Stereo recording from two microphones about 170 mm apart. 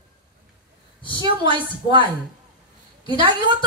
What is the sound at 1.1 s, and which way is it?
Speech, 25° right (ahead or behind).